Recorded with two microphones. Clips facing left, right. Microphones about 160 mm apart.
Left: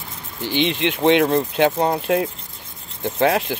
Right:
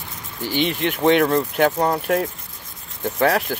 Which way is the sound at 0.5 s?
20° left (ahead or behind).